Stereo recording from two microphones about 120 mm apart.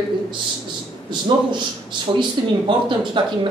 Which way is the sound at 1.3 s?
40° right (ahead or behind).